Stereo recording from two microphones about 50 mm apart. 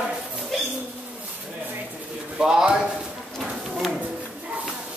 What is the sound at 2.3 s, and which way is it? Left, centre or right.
Speech, centre.